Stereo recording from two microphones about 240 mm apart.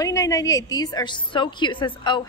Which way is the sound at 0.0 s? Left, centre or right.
Centre.